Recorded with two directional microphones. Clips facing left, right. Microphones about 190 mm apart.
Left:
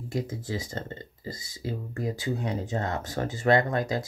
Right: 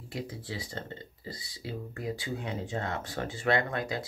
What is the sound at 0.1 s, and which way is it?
Speech, 45° left (ahead or behind).